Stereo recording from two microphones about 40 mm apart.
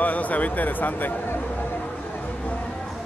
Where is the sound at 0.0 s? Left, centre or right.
Left.